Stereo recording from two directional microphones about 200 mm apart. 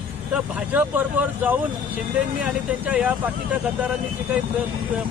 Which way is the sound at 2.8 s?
10° right (ahead or behind).